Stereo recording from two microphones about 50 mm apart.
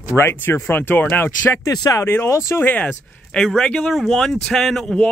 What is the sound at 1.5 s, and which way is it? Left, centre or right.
Speech, left.